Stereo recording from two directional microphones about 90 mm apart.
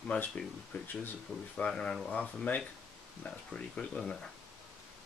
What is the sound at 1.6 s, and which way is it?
Speech, 10° left (ahead or behind).